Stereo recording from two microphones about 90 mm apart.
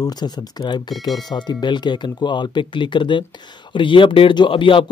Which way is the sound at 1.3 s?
55° left (ahead or behind).